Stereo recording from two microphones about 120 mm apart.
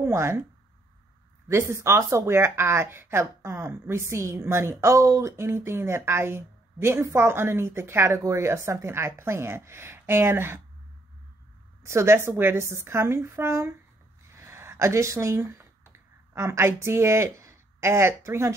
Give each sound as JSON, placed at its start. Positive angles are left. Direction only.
{"t": 0.0, "sound": "speech", "side_deg": -20}
{"t": 1.5, "sound": "speech", "side_deg": -20}
{"t": 11.8, "sound": "speech", "side_deg": -20}
{"t": 14.3, "sound": "a sound", "side_deg": -20}